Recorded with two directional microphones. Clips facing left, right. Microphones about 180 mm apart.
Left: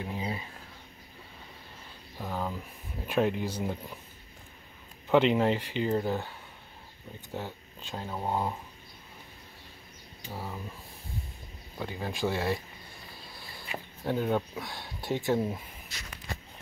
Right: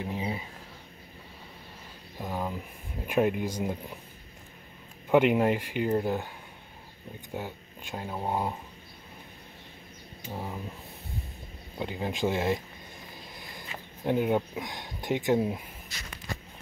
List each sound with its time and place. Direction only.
0.0 s a sound: 20° right (ahead or behind)
2.1 s speech: 15° right (ahead or behind)
5.1 s speech: 10° right (ahead or behind)
10.3 s speech: 15° right (ahead or behind)
11.8 s speech: 20° right (ahead or behind)
13.1 s a sound: 20° right (ahead or behind)
14.0 s speech: 15° right (ahead or behind)